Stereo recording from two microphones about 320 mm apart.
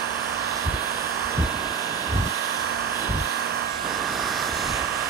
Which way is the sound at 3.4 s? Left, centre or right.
Right.